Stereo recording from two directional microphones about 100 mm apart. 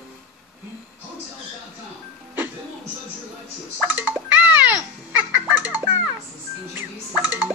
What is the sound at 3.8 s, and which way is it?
Music, 20° right (ahead or behind).